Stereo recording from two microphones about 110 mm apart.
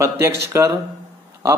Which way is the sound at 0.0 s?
25° right (ahead or behind).